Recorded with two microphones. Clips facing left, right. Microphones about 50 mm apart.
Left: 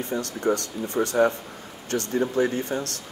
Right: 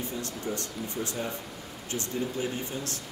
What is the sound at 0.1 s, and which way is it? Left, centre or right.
Speech, left.